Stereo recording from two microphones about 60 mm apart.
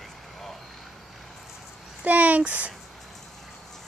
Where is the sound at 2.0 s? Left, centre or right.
Right.